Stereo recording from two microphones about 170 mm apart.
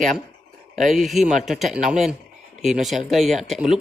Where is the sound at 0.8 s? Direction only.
Centre (ahead or behind).